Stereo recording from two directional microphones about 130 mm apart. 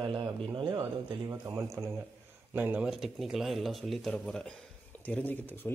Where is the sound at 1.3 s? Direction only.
25° right (ahead or behind).